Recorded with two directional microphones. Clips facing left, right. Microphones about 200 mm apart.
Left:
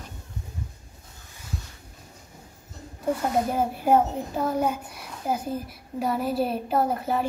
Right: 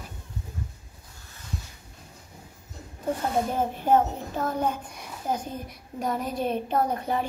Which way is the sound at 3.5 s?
10° left (ahead or behind).